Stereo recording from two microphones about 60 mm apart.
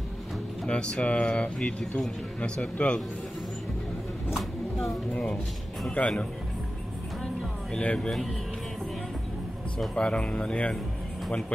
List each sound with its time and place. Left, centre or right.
0.7 s speech: centre
5.1 s speech: left
7.7 s speech: centre
9.9 s speech: centre